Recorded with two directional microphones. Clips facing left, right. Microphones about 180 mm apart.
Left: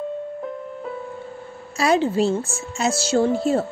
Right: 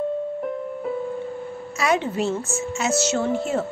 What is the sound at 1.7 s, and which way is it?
A woman's voice, 30° left (ahead or behind).